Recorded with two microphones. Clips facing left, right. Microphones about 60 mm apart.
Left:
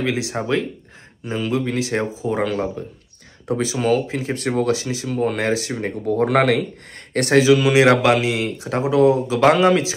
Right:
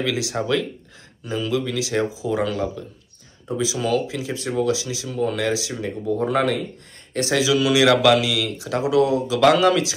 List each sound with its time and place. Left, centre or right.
0.0 s speech: left
3.4 s speech: left
7.2 s speech: left